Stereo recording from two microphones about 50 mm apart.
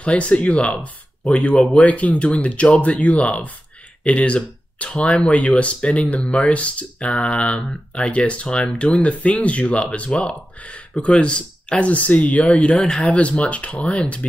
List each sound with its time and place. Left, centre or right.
0.0 s speech: left
12.7 s speech: centre